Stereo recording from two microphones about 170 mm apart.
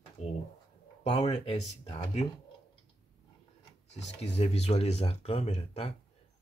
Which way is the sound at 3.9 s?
40° left (ahead or behind).